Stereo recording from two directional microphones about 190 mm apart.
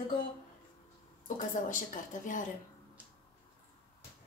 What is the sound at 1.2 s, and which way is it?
Speech, 45° left (ahead or behind).